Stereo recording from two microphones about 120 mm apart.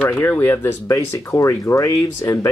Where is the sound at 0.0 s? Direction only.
15° left (ahead or behind).